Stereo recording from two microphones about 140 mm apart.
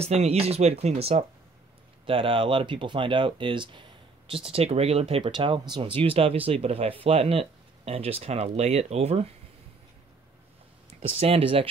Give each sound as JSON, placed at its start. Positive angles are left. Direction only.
{"t": 0.0, "sound": "speech", "side_deg": -50}
{"t": 2.0, "sound": "speech", "side_deg": -40}
{"t": 11.0, "sound": "speech", "side_deg": -45}